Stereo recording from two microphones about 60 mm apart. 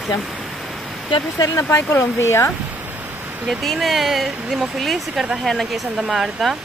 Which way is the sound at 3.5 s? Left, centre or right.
Centre.